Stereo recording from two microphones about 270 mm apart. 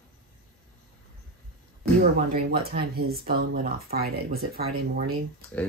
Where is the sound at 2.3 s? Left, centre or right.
Right.